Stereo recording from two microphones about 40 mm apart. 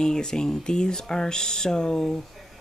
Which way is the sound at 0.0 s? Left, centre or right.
Centre.